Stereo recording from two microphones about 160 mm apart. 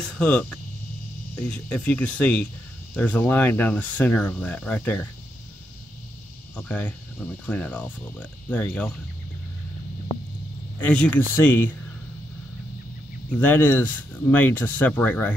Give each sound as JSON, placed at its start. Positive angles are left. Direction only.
{"t": 0.2, "sound": "speech", "side_deg": 5}
{"t": 6.5, "sound": "speech", "side_deg": 10}
{"t": 10.8, "sound": "speech", "side_deg": 10}
{"t": 13.3, "sound": "speech", "side_deg": 10}